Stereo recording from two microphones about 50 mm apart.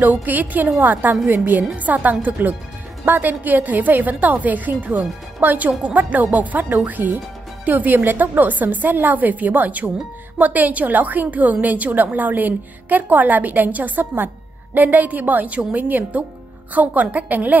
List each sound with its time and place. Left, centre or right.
0.0 s a woman's voice: right